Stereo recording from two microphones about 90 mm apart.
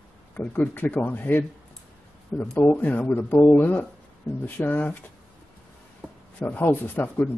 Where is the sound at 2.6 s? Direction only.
20° left (ahead or behind).